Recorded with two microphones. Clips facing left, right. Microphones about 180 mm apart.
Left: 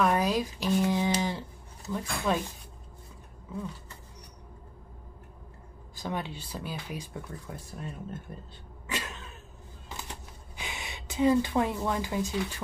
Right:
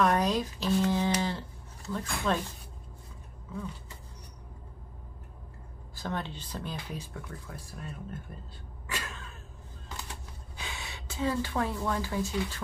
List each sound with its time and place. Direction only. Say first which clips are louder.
0.0 s speech: even; 5° left (ahead or behind)
5.9 s speech: left 1 dB; 10° left (ahead or behind)
8.8 s a sound: left 3 dB; 20° left (ahead or behind)
10.5 s a woman's voice: left 2 dB; 15° left (ahead or behind)